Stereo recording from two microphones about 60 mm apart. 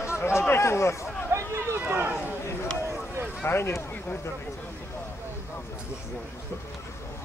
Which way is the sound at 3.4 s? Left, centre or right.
Left.